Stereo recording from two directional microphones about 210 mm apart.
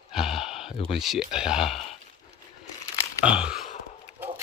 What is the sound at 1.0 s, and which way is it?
Speech, centre (ahead or behind).